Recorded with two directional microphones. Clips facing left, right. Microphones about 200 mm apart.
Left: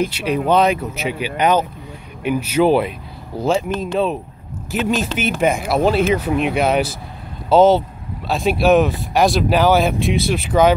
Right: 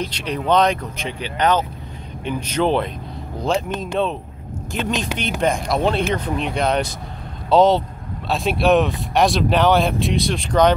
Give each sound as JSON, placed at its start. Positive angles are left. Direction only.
{"t": 0.1, "sound": "speech", "side_deg": 10}